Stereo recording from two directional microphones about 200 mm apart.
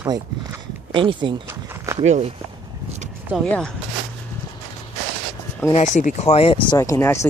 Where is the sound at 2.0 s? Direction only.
35° right (ahead or behind).